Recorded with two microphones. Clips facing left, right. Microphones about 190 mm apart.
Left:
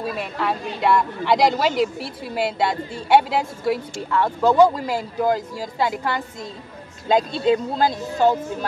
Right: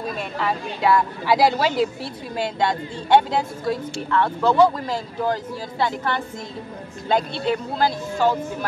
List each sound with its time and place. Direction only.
0.0 s a woman's voice: 5° left (ahead or behind); by 8.4 s 20° left (ahead or behind)